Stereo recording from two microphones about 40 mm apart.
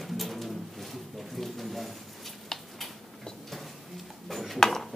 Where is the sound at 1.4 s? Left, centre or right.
Centre.